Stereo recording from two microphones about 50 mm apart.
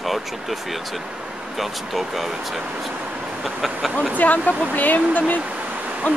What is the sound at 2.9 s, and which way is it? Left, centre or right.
Vehicle, right.